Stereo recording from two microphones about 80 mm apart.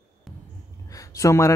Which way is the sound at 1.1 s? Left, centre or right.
Left.